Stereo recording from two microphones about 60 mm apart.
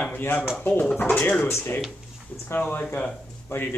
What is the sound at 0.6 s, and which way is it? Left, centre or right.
Speech, centre.